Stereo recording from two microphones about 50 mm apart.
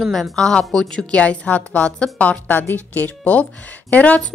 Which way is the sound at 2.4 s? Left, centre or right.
Left.